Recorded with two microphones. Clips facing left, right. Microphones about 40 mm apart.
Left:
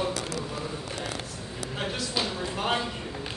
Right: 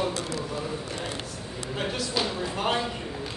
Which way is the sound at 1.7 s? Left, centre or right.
Centre.